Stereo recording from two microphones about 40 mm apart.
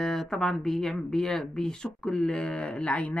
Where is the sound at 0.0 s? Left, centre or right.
Centre.